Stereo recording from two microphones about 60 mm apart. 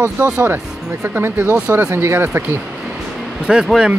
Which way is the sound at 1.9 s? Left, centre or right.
Right.